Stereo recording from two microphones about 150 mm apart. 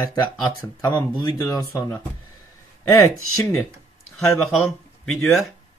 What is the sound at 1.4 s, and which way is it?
Speech, 20° left (ahead or behind).